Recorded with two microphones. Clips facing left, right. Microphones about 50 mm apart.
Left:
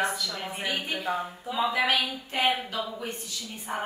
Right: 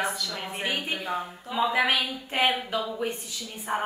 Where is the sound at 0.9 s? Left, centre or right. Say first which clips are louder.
Even; centre.